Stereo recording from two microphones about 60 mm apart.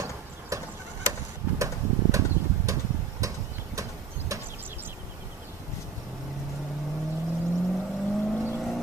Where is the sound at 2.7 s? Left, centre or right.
Right.